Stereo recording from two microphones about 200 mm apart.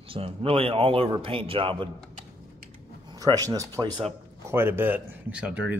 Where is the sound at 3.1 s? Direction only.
20° right (ahead or behind).